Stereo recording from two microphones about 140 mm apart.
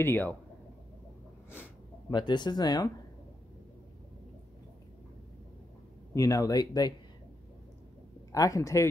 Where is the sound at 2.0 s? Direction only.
30° left (ahead or behind).